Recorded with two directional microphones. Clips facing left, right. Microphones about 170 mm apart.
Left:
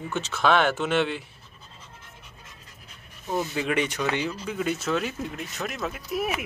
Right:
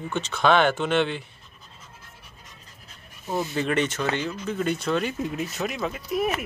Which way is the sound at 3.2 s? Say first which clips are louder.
Even; 5° right (ahead or behind).